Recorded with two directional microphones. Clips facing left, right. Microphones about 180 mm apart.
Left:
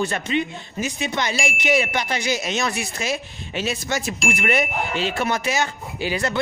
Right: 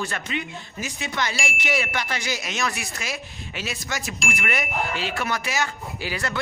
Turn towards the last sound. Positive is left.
turn(degrees=20)  # may be behind; listen again after turning